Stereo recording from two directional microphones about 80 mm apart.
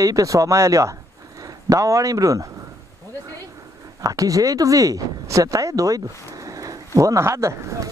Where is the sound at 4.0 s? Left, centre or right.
Right.